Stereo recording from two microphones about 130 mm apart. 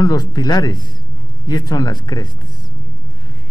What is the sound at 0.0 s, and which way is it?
Speech, 30° left (ahead or behind).